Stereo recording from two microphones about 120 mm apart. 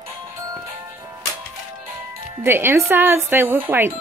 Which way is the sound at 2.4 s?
20° right (ahead or behind).